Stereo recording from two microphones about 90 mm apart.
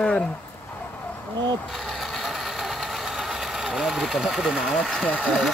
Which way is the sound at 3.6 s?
5° right (ahead or behind).